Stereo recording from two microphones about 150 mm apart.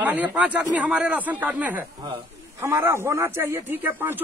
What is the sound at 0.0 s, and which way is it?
A man's voice, 10° right (ahead or behind).